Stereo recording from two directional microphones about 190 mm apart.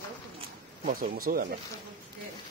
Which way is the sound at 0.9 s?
45° right (ahead or behind).